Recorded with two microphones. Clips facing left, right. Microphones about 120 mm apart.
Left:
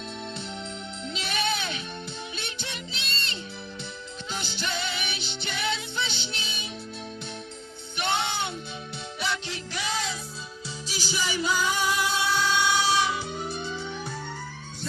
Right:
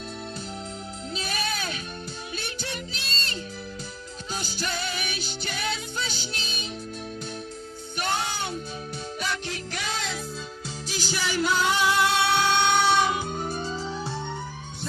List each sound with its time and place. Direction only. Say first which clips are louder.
1.1 s music: left 2 dB; 40° right (ahead or behind)
8.2 s music: even; 40° right (ahead or behind)